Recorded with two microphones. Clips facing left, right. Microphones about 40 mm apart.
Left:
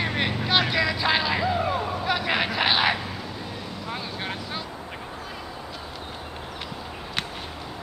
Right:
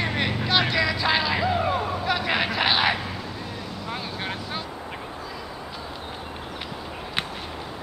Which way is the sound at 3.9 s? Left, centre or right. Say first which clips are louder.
Right 1 dB; centre.